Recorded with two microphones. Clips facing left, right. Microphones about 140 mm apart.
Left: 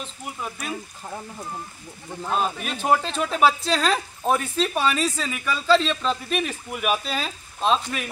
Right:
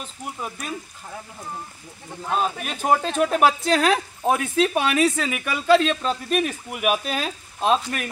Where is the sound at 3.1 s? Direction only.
50° right (ahead or behind).